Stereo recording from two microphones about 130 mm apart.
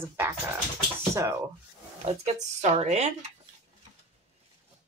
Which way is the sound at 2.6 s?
60° right (ahead or behind).